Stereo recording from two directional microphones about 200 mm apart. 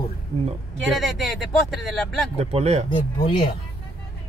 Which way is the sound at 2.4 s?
30° right (ahead or behind).